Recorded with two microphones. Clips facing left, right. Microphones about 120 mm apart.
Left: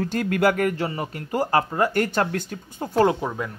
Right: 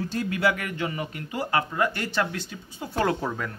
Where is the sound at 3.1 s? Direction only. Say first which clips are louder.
Left 2 dB; 15° left (ahead or behind).